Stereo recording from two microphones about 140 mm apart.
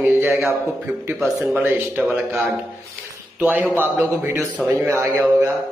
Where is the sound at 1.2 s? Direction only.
5° right (ahead or behind).